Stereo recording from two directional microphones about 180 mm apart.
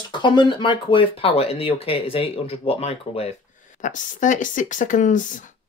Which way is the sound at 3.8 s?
45° left (ahead or behind).